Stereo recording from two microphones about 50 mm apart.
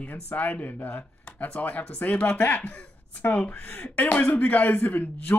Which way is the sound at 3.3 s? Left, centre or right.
Left.